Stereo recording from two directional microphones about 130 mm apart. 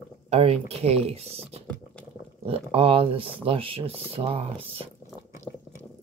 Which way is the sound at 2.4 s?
45° right (ahead or behind).